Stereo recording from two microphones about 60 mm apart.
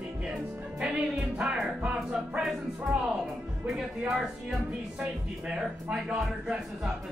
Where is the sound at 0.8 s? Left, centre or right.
Centre.